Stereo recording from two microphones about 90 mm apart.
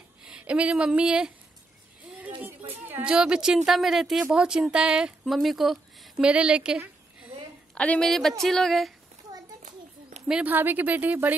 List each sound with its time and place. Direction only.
0.2 s speech: 10° right (ahead or behind)
3.0 s a woman's voice: 10° right (ahead or behind)
7.7 s a woman's voice: 15° left (ahead or behind)
8.0 s speech: 5° left (ahead or behind)
10.2 s a woman's voice: 10° right (ahead or behind)
10.5 s a woman's voice: 20° right (ahead or behind)